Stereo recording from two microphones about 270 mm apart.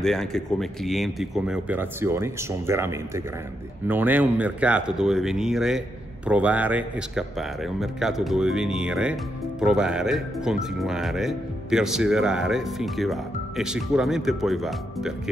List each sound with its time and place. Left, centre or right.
0.0 s speech: centre